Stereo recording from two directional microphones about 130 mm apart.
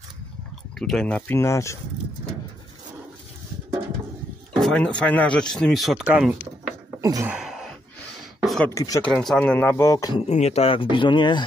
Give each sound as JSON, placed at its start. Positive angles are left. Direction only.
{"t": 0.7, "sound": "speech", "side_deg": 5}
{"t": 4.6, "sound": "speech", "side_deg": 5}
{"t": 7.0, "sound": "a sound", "side_deg": -30}
{"t": 7.2, "sound": "a sound", "side_deg": -5}
{"t": 8.6, "sound": "speech", "side_deg": 25}
{"t": 9.0, "sound": "speech", "side_deg": 0}
{"t": 10.2, "sound": "speech", "side_deg": 60}